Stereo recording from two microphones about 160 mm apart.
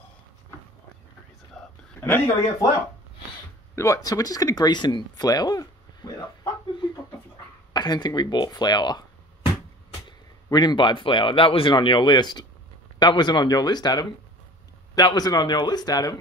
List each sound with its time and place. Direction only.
1.6 s whispering: centre (ahead or behind)
2.0 s speech: 15° left (ahead or behind)
3.7 s speech: 20° left (ahead or behind)
10.0 s speech: 25° left (ahead or behind)